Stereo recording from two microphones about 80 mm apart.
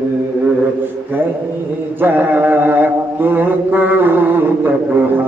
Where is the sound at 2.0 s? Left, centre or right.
Right.